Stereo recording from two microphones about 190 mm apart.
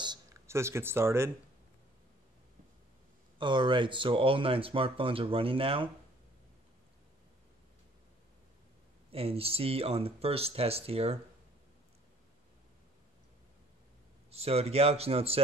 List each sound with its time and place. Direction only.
0.0 s a sound: 20° right (ahead or behind)
3.3 s speech: 25° right (ahead or behind)
9.1 s speech: 30° right (ahead or behind)
14.3 s speech: 30° right (ahead or behind)